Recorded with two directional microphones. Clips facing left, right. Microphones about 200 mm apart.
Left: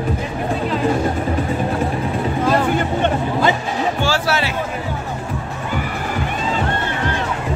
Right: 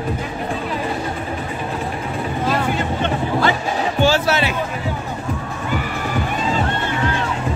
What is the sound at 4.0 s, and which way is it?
Music, 20° right (ahead or behind).